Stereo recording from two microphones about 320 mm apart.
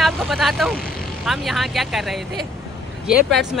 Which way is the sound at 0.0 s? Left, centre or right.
Centre.